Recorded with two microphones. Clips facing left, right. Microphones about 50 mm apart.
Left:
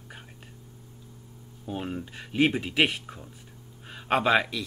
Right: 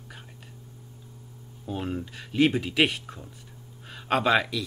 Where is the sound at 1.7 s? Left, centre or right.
Centre.